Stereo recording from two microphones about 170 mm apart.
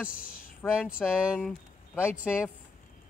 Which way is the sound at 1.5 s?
15° left (ahead or behind).